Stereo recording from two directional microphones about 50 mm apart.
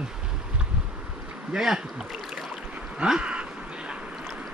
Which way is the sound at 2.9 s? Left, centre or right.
Centre.